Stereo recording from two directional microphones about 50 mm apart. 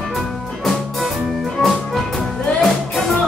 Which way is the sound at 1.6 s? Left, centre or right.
Centre.